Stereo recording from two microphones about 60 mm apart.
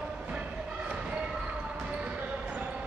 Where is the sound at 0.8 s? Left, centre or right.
Centre.